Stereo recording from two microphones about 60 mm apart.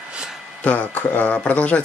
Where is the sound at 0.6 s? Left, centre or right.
Left.